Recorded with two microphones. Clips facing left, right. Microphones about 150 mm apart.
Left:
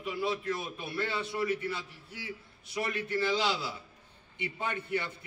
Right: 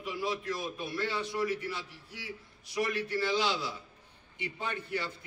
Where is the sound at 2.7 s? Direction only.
20° left (ahead or behind).